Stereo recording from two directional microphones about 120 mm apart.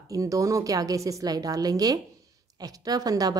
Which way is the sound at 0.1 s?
30° right (ahead or behind).